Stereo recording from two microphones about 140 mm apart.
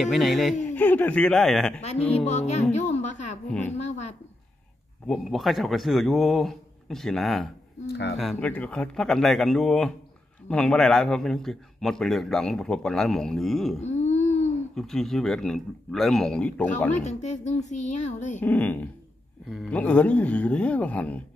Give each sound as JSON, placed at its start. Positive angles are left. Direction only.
{"t": 0.0, "sound": "a man's voice", "side_deg": 0}
{"t": 0.7, "sound": "speech", "side_deg": 10}
{"t": 1.8, "sound": "a woman's voice", "side_deg": 50}
{"t": 2.7, "sound": "music", "side_deg": 55}
{"t": 3.4, "sound": "speech", "side_deg": 5}
{"t": 3.7, "sound": "a woman's voice", "side_deg": 55}
{"t": 5.0, "sound": "a man's voice", "side_deg": 5}
{"t": 13.7, "sound": "a sound", "side_deg": 55}
{"t": 14.8, "sound": "a man's voice", "side_deg": 0}
{"t": 17.0, "sound": "speech", "side_deg": 55}
{"t": 18.4, "sound": "speech", "side_deg": 10}